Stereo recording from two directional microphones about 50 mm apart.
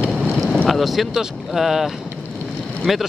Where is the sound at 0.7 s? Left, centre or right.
Centre.